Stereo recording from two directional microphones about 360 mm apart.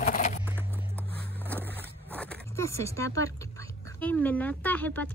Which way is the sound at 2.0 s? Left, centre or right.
Centre.